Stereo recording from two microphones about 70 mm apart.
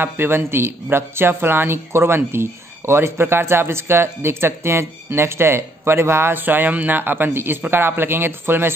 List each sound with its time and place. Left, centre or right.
0.0 s speech: right